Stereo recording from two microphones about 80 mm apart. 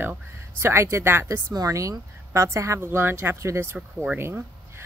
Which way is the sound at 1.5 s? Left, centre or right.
Right.